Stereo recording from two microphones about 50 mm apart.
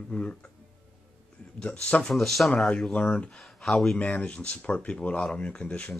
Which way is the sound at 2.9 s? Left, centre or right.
Left.